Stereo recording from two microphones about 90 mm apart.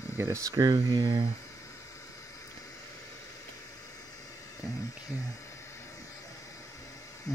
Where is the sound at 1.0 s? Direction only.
90° right.